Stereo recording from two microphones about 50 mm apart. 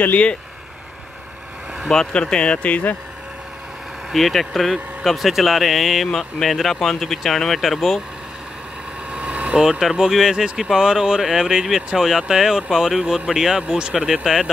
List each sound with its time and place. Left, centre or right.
0.0 s speech: left
1.9 s speech: centre; by 3.0 s left
4.1 s speech: centre
9.1 s vehicle: right
9.6 s speech: centre